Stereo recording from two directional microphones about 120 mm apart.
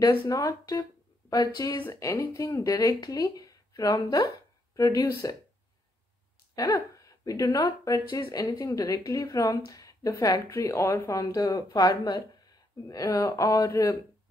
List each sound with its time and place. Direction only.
0.3 s a woman's voice: 30° left (ahead or behind)
6.5 s a woman's voice: 30° left (ahead or behind)